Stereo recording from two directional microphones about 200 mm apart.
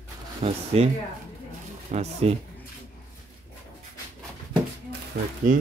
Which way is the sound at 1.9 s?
30° right (ahead or behind).